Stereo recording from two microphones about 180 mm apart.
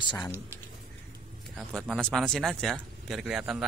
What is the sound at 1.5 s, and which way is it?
Speech, centre (ahead or behind).